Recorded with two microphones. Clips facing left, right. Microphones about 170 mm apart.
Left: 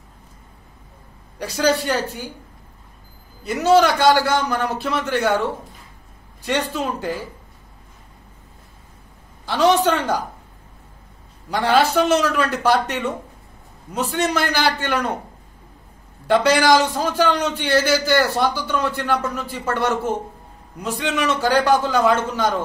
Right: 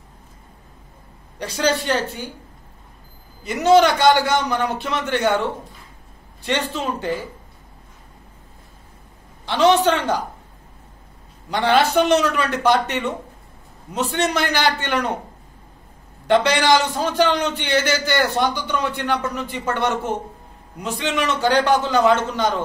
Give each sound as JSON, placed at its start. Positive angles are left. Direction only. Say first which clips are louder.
{"t": 1.4, "sound": "a man's voice", "louder": "left 2 dB", "side_deg": 10}
{"t": 3.6, "sound": "a man's voice", "louder": "right 1 dB", "side_deg": 5}
{"t": 6.4, "sound": "a man's voice", "louder": "left 1 dB", "side_deg": 10}
{"t": 9.5, "sound": "a man's voice", "louder": "right 1 dB", "side_deg": 10}
{"t": 11.5, "sound": "a man's voice", "louder": "even", "side_deg": 10}
{"t": 14.2, "sound": "a man's voice", "louder": "even", "side_deg": 5}
{"t": 16.3, "sound": "a man's voice", "louder": "left 1 dB", "side_deg": 10}